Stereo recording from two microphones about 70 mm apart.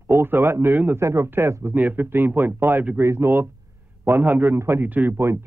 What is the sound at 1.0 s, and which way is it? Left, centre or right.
Speech, right.